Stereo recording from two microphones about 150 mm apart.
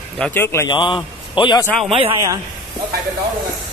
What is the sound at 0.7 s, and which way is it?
Speech, 30° left (ahead or behind).